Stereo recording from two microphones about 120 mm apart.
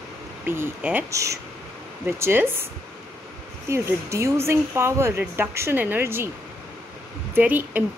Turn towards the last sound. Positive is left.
turn(degrees=-15)  # may be behind; listen again after turning